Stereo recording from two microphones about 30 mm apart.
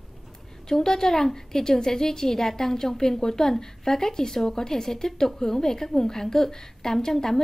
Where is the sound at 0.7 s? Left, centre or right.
Centre.